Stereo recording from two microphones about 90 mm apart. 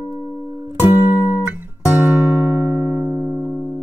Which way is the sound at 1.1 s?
55° left (ahead or behind).